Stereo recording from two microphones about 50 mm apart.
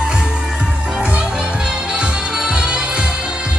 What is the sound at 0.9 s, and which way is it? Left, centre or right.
Music, right.